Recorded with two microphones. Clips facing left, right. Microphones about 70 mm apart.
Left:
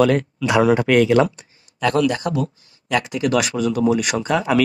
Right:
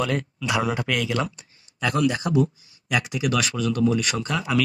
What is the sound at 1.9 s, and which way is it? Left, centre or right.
Speech, left.